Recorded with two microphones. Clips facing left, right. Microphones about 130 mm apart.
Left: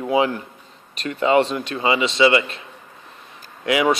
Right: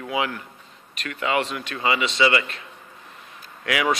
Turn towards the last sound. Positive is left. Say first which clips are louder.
# left 5 dB
turn(degrees=25)  # may be behind; listen again after turning